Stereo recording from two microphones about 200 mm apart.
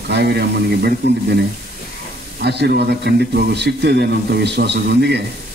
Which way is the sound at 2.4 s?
55° right (ahead or behind).